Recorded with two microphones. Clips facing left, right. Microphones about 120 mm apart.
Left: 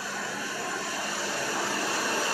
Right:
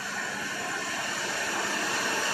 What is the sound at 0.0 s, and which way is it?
Train, 5° left (ahead or behind).